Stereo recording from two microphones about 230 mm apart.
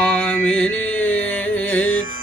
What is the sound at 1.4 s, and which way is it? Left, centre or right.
Music, centre.